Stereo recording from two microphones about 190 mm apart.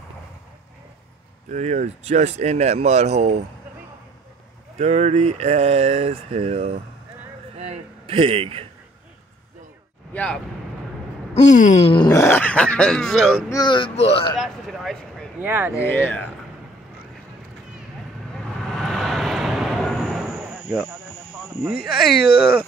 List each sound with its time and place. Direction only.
1.5 s speech: 40° right (ahead or behind)
4.7 s a man's voice: 35° right (ahead or behind)
10.1 s speech: 5° left (ahead or behind)
11.3 s speech: 40° left (ahead or behind); by 13.3 s centre (ahead or behind)
13.5 s speech: 20° left (ahead or behind)
14.3 s speech: centre (ahead or behind)
15.3 s speech: 10° right (ahead or behind)
15.8 s speech: 10° left (ahead or behind)
18.3 s vehicle: centre (ahead or behind)
22.2 s speech: 5° right (ahead or behind)